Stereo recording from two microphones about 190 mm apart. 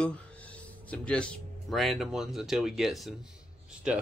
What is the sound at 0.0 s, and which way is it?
Speech, 5° left (ahead or behind).